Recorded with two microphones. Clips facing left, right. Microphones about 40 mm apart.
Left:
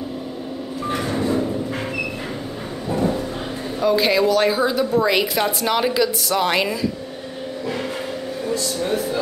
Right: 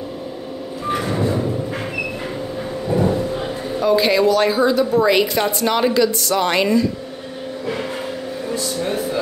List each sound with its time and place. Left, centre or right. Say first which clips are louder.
0.8 s vehicle: right 2 dB; centre
2.9 s a sound: right 3 dB; centre
3.8 s a woman's voice: right 2 dB; centre
8.5 s speech: even; centre